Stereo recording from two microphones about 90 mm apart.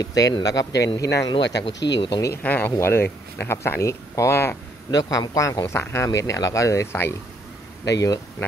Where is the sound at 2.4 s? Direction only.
20° left (ahead or behind).